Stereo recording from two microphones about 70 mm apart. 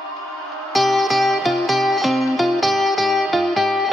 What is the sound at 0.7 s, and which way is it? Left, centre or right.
Music, centre.